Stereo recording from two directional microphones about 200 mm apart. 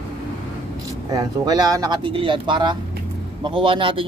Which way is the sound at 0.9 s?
20° right (ahead or behind).